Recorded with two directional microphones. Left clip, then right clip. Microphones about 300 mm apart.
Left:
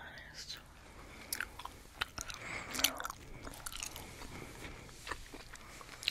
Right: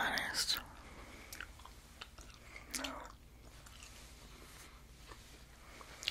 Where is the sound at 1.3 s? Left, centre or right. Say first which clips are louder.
Left 9 dB; left.